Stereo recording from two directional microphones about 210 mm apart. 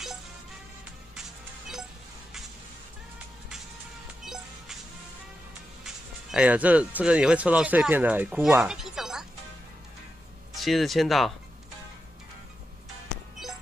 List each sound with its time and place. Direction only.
4.2 s music: centre (ahead or behind)
6.3 s speech: 5° right (ahead or behind)
10.5 s speech: centre (ahead or behind)